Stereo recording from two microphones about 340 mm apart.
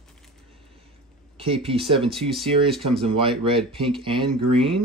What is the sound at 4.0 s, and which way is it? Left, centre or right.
Speech, centre.